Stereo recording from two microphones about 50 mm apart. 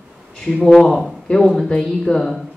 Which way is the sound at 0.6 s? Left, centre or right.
Centre.